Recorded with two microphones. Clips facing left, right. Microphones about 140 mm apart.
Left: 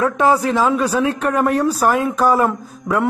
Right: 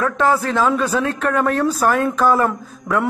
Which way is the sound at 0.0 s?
15° left (ahead or behind).